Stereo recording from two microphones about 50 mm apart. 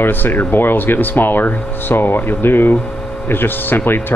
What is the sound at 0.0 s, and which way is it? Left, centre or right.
Speech, left.